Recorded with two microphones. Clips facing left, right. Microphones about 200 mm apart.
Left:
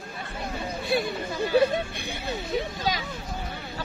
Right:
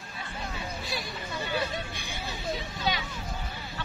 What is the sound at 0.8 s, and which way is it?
Speech, 55° left (ahead or behind).